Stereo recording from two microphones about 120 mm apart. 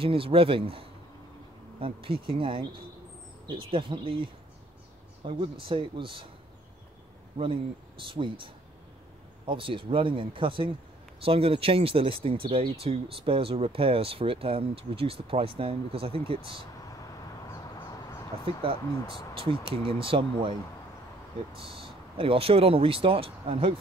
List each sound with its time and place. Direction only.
0.0 s speech: 50° right (ahead or behind)
8.1 s speech: 45° right (ahead or behind)
9.5 s speech: 45° right (ahead or behind)
18.4 s speech: 50° right (ahead or behind)
21.5 s speech: 50° right (ahead or behind)